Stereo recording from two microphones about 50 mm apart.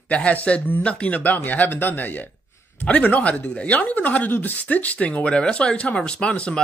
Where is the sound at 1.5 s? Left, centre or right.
Left.